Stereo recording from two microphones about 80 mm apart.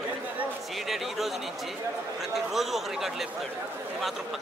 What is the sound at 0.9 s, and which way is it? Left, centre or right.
Speech, centre.